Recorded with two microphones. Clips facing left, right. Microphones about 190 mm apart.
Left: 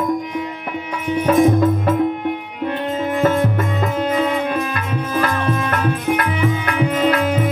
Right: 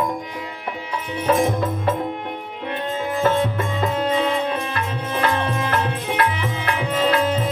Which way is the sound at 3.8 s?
30° right (ahead or behind).